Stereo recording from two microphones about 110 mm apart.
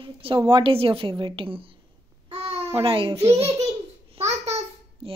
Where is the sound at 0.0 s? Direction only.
50° right (ahead or behind).